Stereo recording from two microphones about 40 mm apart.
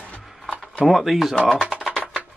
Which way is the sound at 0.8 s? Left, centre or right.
Centre.